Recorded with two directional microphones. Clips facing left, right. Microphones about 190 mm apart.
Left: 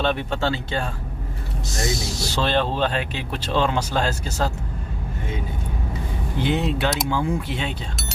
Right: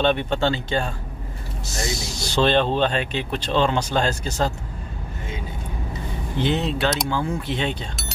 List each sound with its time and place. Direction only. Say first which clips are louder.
0.0 s speech: right 3 dB; 5° left (ahead or behind)
6.3 s speech: even; 10° left (ahead or behind)